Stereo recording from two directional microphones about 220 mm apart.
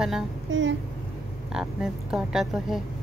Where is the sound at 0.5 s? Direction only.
55° right (ahead or behind).